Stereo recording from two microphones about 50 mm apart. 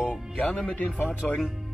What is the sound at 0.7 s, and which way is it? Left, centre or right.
Speech, left.